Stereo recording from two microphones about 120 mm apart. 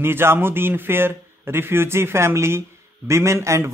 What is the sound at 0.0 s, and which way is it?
Speech, 20° right (ahead or behind).